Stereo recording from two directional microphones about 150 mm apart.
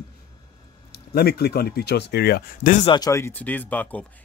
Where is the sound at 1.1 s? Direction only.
90° left.